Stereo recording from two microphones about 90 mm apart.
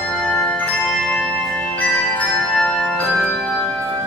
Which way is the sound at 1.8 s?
15° left (ahead or behind).